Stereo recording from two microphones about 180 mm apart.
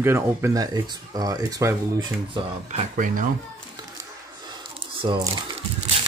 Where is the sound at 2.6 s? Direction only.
40° right (ahead or behind).